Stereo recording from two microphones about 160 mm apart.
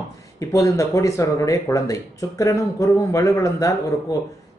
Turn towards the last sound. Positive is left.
turn(degrees=20)  # may be behind; listen again after turning